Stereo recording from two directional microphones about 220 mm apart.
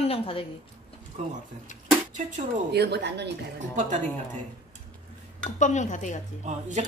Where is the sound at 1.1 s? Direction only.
30° right (ahead or behind).